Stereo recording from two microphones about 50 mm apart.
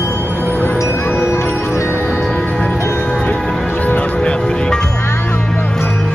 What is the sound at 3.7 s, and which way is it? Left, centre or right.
Music, left.